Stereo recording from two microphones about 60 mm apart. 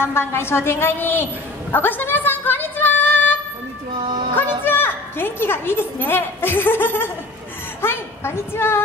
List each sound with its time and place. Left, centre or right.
0.0 s a woman's voice: left
4.4 s a woman's voice: left